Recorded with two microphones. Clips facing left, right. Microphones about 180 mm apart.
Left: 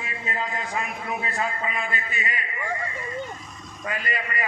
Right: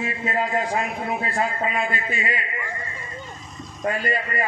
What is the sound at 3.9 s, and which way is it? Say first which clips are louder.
Speech: right 6 dB; 30° right (ahead or behind).